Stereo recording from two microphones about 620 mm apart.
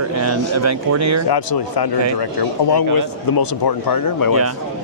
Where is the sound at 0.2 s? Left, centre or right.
Right.